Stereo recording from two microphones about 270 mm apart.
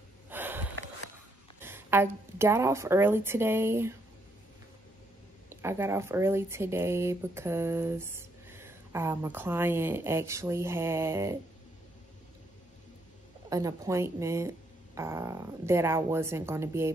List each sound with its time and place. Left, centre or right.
0.3 s a sound: centre
1.6 s speech: centre
5.5 s speech: centre
13.5 s speech: centre